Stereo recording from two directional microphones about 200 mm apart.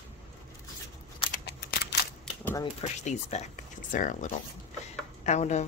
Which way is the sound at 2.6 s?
35° left (ahead or behind).